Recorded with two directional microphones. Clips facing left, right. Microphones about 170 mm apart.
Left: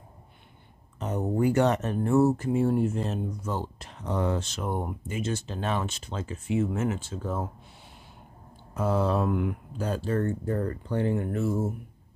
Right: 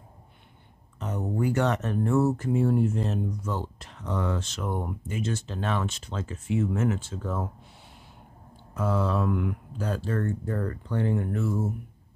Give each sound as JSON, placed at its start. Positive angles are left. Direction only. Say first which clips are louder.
{"t": 0.9, "sound": "speech", "louder": "left 2 dB", "side_deg": 25}
{"t": 5.0, "sound": "speech", "louder": "even", "side_deg": 10}
{"t": 8.7, "sound": "speech", "louder": "left 1 dB", "side_deg": 30}